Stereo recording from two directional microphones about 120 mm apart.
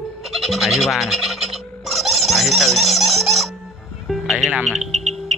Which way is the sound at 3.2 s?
Centre (ahead or behind).